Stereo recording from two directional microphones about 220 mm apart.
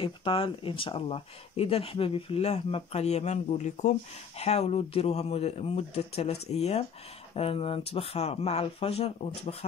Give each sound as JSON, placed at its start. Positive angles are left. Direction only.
{"t": 0.0, "sound": "speech", "side_deg": 25}